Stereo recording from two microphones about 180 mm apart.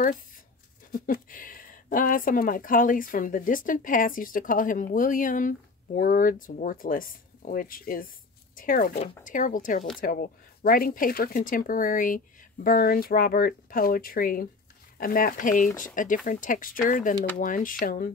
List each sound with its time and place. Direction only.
0.9 s speech: 50° left (ahead or behind)